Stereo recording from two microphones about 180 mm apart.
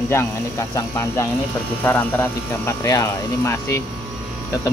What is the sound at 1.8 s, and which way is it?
Speech, 10° left (ahead or behind).